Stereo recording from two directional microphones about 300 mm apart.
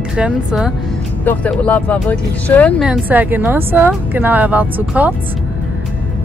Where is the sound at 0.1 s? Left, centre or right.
Centre.